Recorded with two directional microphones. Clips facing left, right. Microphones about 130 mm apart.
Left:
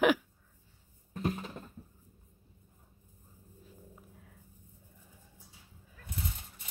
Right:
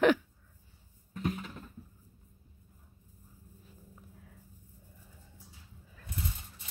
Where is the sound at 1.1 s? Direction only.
35° left (ahead or behind).